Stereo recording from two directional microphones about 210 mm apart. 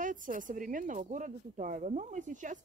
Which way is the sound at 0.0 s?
40° right (ahead or behind).